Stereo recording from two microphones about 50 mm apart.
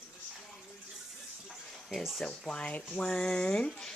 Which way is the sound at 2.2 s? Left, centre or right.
Centre.